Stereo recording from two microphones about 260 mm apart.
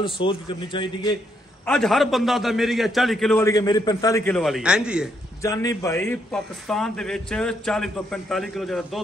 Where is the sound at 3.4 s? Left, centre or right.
Centre.